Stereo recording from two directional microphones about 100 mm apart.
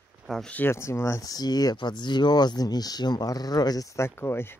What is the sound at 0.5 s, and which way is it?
Speech, 25° left (ahead or behind).